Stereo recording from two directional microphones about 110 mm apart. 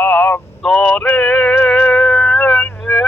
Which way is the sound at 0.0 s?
10° left (ahead or behind).